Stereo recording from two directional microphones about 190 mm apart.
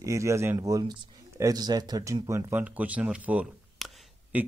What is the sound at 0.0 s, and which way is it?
Speech, 15° right (ahead or behind).